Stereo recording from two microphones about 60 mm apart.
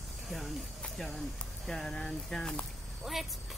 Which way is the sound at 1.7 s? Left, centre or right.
Centre.